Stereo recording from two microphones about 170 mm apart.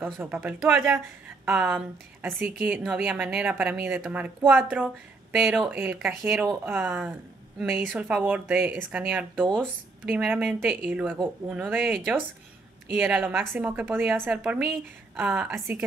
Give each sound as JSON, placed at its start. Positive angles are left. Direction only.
{"t": 0.0, "sound": "a woman's voice", "side_deg": -10}